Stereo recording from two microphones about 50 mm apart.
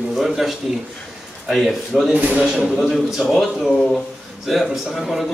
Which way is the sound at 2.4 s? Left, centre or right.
Centre.